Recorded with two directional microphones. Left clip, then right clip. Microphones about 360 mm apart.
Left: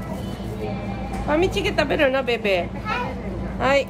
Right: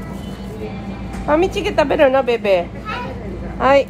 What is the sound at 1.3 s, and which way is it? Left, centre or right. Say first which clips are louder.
A woman's voice: right 5 dB; centre.